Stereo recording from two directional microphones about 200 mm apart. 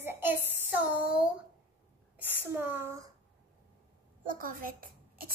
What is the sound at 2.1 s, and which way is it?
Speech, 10° right (ahead or behind).